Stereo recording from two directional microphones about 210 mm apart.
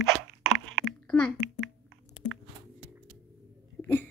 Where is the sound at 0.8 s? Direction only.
5° left (ahead or behind).